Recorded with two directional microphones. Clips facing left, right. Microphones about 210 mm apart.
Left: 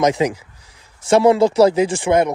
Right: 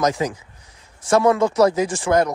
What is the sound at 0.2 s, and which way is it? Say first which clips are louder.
Speech: left 5 dB; 25° left (ahead or behind).